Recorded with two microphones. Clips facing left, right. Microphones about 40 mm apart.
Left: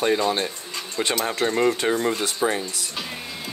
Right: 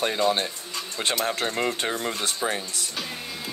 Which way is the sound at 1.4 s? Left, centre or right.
Centre.